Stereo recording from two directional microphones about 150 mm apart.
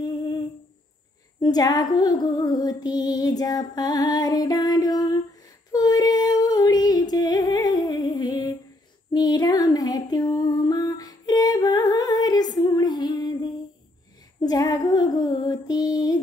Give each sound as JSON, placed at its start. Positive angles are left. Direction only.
{"t": 0.0, "sound": "humming", "side_deg": 25}
{"t": 1.4, "sound": "female singing", "side_deg": 25}